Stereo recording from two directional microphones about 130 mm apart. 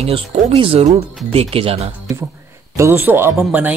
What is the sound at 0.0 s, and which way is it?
Speech, 45° right (ahead or behind).